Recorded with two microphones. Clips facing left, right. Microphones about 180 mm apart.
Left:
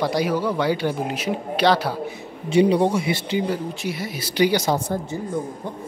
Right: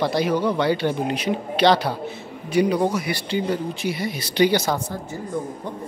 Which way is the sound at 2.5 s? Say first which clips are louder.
Left 3 dB; 30° left (ahead or behind).